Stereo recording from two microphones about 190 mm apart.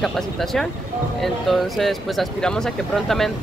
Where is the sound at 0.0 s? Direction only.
Centre (ahead or behind).